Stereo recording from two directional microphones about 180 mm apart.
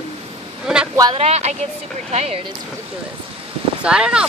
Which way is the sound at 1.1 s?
35° right (ahead or behind).